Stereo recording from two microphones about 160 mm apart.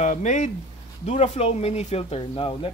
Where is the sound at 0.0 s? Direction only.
50° left (ahead or behind).